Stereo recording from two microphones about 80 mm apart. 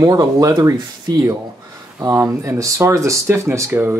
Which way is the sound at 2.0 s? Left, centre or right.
Right.